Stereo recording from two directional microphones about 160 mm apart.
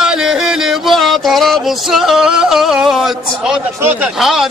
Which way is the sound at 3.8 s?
10° right (ahead or behind).